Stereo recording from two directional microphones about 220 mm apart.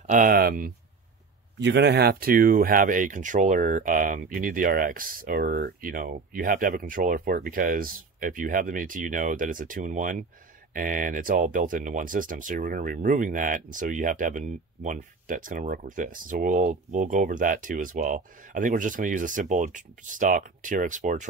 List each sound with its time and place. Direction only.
0.0 s speech: 35° right (ahead or behind)